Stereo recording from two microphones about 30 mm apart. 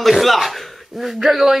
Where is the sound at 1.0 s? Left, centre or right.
Centre.